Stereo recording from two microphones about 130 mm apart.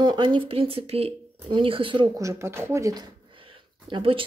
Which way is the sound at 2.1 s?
20° right (ahead or behind).